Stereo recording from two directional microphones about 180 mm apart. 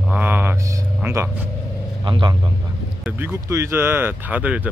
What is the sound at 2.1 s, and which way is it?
Speech, 25° right (ahead or behind).